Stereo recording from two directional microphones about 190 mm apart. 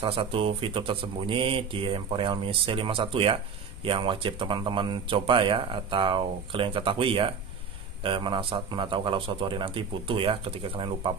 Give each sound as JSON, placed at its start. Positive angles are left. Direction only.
{"t": 0.0, "sound": "speech", "side_deg": -30}